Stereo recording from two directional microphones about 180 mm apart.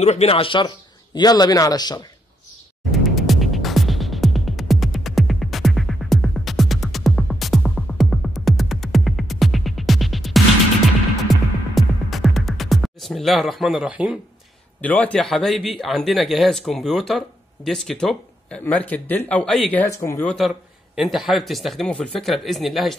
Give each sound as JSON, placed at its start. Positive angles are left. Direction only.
{"t": 0.0, "sound": "a man's voice", "side_deg": 35}
{"t": 2.9, "sound": "music", "side_deg": 0}
{"t": 14.8, "sound": "speech", "side_deg": 10}
{"t": 20.2, "sound": "speech", "side_deg": 0}